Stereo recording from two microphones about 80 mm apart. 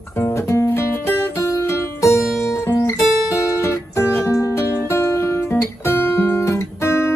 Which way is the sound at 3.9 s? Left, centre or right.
Left.